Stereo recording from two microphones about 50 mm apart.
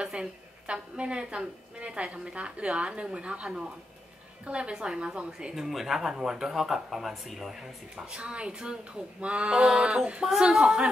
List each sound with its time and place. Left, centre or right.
0.0 s a woman's voice: right
5.5 s speech: centre
8.1 s a woman's voice: right